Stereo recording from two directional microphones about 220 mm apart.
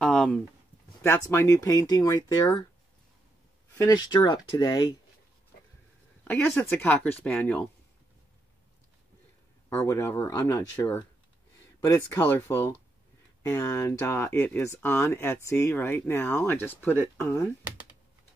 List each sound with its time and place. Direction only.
0.0 s a sound: 5° left (ahead or behind)
1.0 s speech: 10° left (ahead or behind)
3.7 s speech: 15° left (ahead or behind)
6.2 s speech: 10° left (ahead or behind)
9.7 s speech: 10° left (ahead or behind)